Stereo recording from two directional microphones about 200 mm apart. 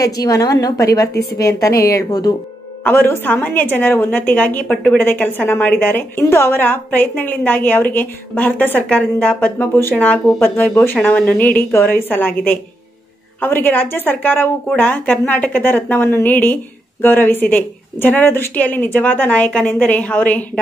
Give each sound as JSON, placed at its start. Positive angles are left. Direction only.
{"t": 0.0, "sound": "a woman's voice", "side_deg": 15}